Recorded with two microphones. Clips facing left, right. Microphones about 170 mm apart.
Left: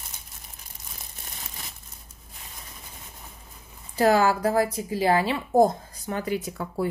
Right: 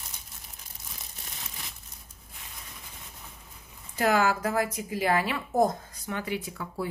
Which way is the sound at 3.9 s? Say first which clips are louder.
Left 4 dB; 35° left (ahead or behind).